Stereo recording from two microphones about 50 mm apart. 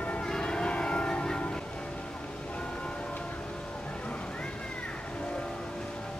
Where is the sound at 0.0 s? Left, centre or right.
Left.